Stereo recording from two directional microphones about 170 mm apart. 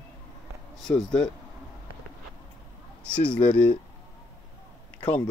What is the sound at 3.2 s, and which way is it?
Speech, 10° left (ahead or behind).